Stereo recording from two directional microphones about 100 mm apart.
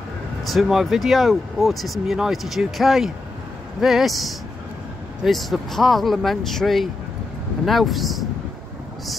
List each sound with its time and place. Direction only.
0.4 s speech: centre (ahead or behind)